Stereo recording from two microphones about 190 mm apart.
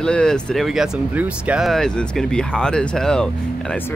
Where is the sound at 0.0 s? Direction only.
5° left (ahead or behind).